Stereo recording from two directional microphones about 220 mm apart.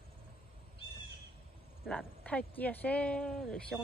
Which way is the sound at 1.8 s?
5° left (ahead or behind).